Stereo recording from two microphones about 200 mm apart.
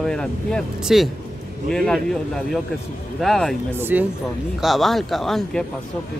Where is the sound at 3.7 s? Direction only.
10° right (ahead or behind).